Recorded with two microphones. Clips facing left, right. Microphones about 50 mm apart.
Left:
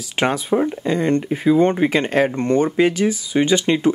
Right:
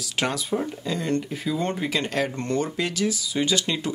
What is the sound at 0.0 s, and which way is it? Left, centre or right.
Speech, left.